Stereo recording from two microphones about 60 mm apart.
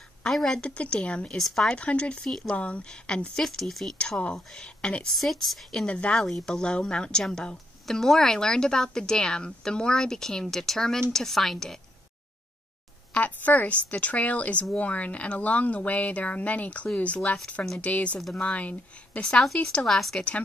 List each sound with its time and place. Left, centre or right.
0.2 s a woman's voice: centre
0.6 s speech: centre
1.8 s speech: left
2.2 s a woman's voice: centre
2.5 s speech: left
3.4 s a woman's voice: centre
5.1 s a woman's voice: centre
5.9 s speech: centre
6.1 s a woman's voice: centre
13.1 s speech: left
19.2 s a woman's voice: centre